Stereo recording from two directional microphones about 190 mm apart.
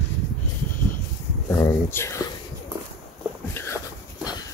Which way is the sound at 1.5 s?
15° left (ahead or behind).